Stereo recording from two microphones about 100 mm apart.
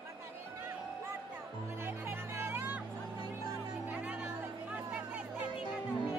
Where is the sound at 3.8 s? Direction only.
15° right (ahead or behind).